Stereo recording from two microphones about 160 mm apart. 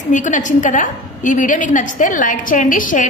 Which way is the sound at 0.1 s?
50° left (ahead or behind).